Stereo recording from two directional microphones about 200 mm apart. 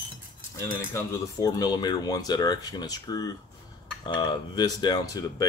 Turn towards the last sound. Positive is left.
turn(degrees=20)  # may be behind; listen again after turning